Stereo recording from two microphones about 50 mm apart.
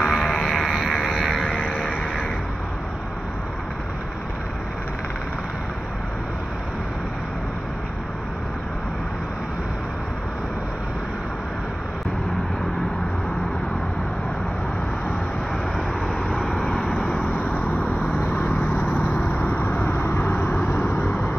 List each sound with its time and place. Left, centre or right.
0.0 s music: centre
16.5 s vehicle: centre
17.4 s vehicle: left
19.7 s vehicle: left
20.5 s a sound: left